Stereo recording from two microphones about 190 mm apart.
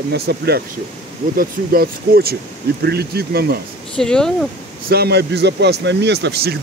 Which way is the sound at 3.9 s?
5° left (ahead or behind).